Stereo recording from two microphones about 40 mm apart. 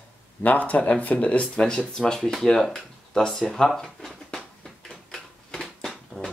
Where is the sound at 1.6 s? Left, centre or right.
Centre.